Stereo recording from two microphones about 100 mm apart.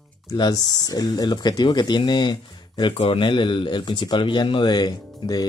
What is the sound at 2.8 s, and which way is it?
Speech, 65° left (ahead or behind).